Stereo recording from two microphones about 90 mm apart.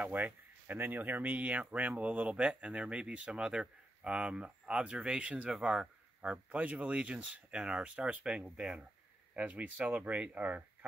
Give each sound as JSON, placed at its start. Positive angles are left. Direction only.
{"t": 0.0, "sound": "speech", "side_deg": -20}